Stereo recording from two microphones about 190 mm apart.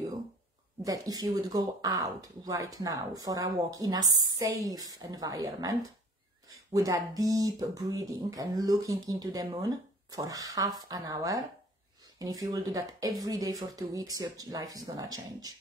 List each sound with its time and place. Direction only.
0.8 s speech: 20° right (ahead or behind)